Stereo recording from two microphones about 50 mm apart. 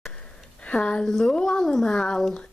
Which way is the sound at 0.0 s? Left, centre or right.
Centre.